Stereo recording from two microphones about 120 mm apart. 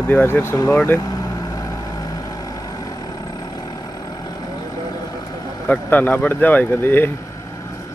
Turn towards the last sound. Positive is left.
turn(degrees=15)  # may be behind; listen again after turning